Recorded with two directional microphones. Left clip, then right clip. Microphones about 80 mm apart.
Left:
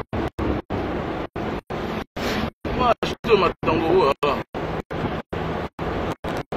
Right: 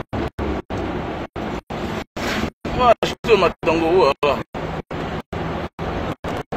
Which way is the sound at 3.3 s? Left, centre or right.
Centre.